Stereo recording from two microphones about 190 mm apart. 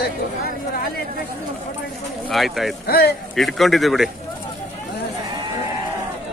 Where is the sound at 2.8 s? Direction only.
55° left (ahead or behind).